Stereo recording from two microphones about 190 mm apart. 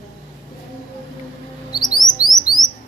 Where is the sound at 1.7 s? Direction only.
20° left (ahead or behind).